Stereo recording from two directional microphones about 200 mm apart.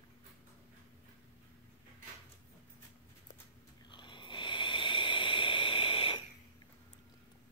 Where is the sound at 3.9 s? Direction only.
25° left (ahead or behind).